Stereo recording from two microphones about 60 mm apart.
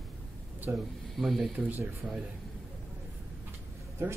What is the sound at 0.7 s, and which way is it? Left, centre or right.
Speech, right.